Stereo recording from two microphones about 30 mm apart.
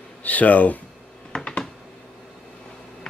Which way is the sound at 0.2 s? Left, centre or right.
Left.